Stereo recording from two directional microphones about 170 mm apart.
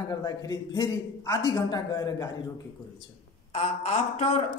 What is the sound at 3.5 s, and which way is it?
Speech, 40° left (ahead or behind).